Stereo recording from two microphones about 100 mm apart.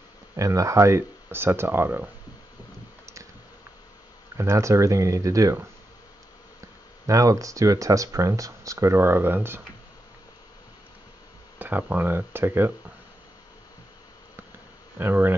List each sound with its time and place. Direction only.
0.4 s speech: 30° right (ahead or behind)
4.4 s speech: 30° right (ahead or behind)
7.1 s speech: 35° right (ahead or behind)
11.5 s speech: 20° right (ahead or behind)
15.0 s speech: 20° right (ahead or behind)